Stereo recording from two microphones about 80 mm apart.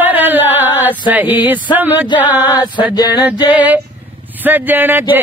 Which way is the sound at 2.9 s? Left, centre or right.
Left.